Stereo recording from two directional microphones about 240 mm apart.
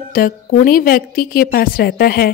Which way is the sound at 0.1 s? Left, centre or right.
Left.